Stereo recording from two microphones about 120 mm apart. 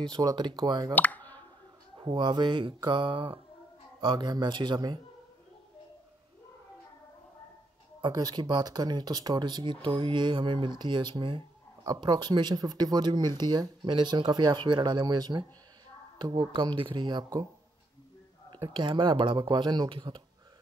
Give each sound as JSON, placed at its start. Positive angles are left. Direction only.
{"t": 0.1, "sound": "speech", "side_deg": -35}
{"t": 0.9, "sound": "a sound", "side_deg": 15}
{"t": 2.0, "sound": "speech", "side_deg": -40}
{"t": 8.0, "sound": "speech", "side_deg": -35}
{"t": 18.5, "sound": "speech", "side_deg": -40}